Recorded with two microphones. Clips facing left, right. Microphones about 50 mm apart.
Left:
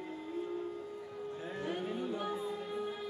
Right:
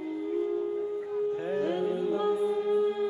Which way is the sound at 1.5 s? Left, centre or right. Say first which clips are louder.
Right 7 dB; right.